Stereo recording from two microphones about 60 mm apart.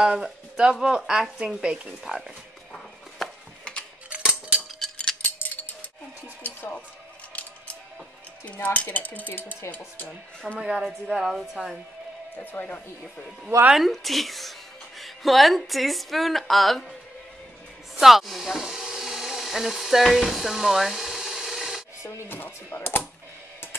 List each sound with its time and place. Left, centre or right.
0.2 s speech: centre
2.7 s a sound: centre
4.1 s music: centre
6.4 s music: left
8.6 s cutlery: left
9.7 s speech: left
10.4 s speech: centre
12.5 s speech: left
13.7 s speech: centre
17.9 s a sound: centre
22.3 s cutlery: left